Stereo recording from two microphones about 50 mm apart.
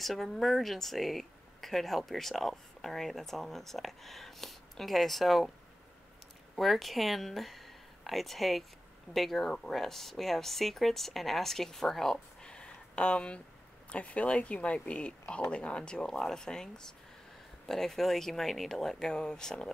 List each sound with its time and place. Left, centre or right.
0.0 s speech: centre
6.5 s speech: centre
12.4 s a sound: left
13.8 s speech: left